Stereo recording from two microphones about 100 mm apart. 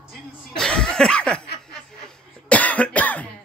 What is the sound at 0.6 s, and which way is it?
Laughter, 10° left (ahead or behind).